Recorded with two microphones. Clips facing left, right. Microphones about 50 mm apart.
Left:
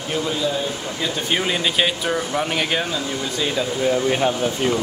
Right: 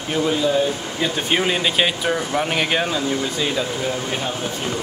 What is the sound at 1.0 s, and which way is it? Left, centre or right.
Speech, centre.